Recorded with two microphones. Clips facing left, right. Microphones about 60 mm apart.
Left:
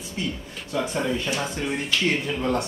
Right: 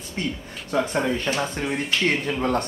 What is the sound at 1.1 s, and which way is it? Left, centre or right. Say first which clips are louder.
Speech: right 2 dB; right.